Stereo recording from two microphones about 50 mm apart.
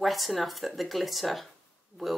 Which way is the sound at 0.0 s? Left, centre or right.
Centre.